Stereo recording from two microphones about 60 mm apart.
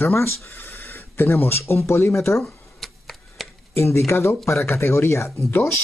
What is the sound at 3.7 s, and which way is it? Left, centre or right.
Speech, left.